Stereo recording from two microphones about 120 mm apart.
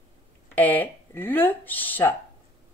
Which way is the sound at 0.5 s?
15° left (ahead or behind).